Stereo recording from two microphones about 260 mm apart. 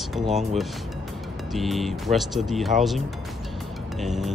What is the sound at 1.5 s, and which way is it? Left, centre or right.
Speech, centre.